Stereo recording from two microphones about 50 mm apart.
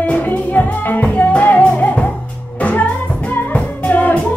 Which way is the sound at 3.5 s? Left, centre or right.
Left.